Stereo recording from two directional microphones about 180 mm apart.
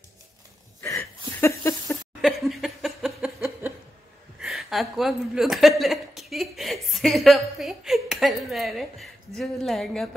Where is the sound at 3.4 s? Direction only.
10° right (ahead or behind).